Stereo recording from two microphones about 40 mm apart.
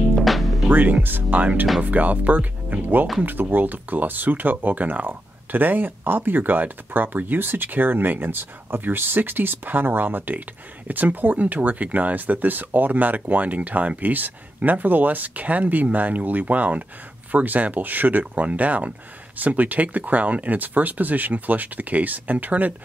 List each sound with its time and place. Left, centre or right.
0.1 s music: centre
0.7 s speech: right